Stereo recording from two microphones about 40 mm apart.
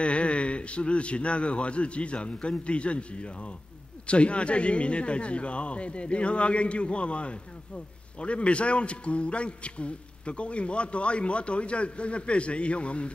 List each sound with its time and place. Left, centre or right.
0.0 s speech: left